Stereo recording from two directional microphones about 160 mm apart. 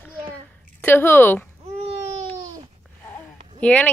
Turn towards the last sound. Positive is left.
turn(degrees=10)  # may be behind; listen again after turning